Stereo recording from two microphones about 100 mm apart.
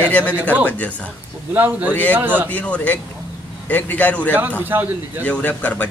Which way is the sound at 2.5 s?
15° left (ahead or behind).